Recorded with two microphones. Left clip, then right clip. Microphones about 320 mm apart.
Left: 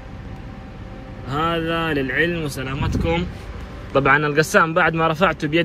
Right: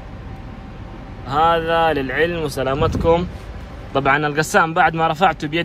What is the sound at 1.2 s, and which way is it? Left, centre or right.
Speech, centre.